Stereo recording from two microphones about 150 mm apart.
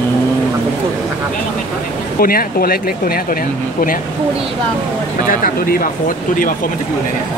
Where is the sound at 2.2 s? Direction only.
75° left (ahead or behind).